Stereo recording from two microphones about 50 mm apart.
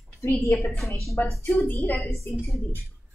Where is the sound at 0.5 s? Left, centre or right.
Centre.